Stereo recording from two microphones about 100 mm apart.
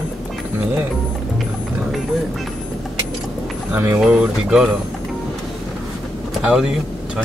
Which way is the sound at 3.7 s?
15° right (ahead or behind).